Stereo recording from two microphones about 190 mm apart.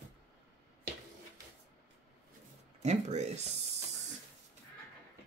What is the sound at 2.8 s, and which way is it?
Speech, 35° right (ahead or behind).